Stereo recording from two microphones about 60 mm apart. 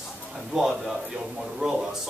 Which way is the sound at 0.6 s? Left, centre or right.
Centre.